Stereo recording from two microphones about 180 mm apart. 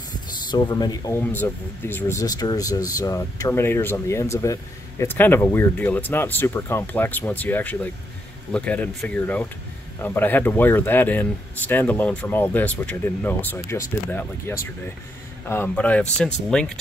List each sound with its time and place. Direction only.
0.5 s speech: 25° left (ahead or behind); by 16.7 s 5° left (ahead or behind)